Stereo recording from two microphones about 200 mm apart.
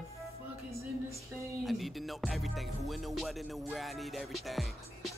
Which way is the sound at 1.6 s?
Centre (ahead or behind).